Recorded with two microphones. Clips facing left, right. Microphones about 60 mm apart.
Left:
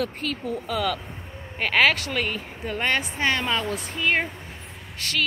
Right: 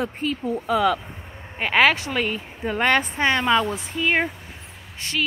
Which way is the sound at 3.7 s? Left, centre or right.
Centre.